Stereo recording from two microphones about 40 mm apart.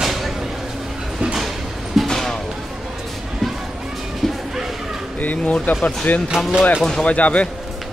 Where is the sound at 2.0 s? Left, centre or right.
Centre.